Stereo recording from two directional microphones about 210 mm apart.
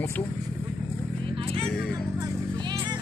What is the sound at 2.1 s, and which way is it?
Music, 15° right (ahead or behind).